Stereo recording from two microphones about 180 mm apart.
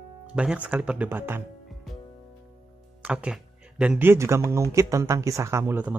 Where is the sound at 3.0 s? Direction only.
5° right (ahead or behind).